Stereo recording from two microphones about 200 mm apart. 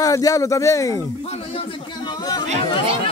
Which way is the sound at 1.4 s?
30° left (ahead or behind).